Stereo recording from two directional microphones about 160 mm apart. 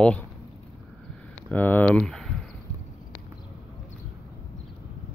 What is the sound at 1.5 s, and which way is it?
Speech, 10° left (ahead or behind).